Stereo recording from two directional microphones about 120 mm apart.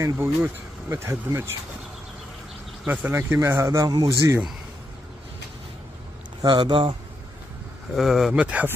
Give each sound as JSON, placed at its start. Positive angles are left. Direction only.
{"t": 0.0, "sound": "speech", "side_deg": -20}
{"t": 2.8, "sound": "speech", "side_deg": -10}
{"t": 6.4, "sound": "a man's voice", "side_deg": -40}
{"t": 7.9, "sound": "speech", "side_deg": 0}